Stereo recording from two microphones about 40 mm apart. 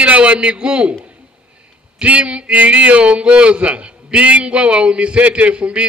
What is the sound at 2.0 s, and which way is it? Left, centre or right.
Speech, right.